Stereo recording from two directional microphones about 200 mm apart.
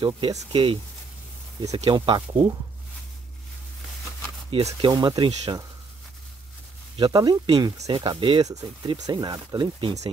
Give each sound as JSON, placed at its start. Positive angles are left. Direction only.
{"t": 0.0, "sound": "speech", "side_deg": -20}
{"t": 1.8, "sound": "speech", "side_deg": -25}
{"t": 4.6, "sound": "speech", "side_deg": -20}
{"t": 7.0, "sound": "speech", "side_deg": -20}